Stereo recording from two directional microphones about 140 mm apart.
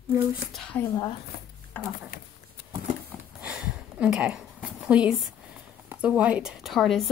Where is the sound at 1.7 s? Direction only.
15° left (ahead or behind).